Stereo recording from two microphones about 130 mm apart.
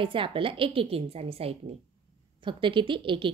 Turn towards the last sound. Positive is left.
turn(degrees=-40)  # may be behind; listen again after turning